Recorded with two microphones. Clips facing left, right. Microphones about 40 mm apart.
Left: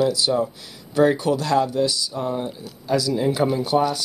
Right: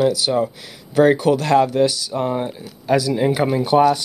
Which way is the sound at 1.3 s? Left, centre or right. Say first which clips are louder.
Right 4 dB; right.